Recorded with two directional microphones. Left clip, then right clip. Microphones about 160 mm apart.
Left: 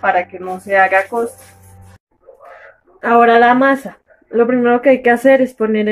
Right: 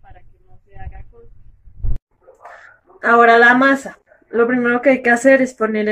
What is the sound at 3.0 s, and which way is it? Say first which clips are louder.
Speech: even; 30° left (ahead or behind).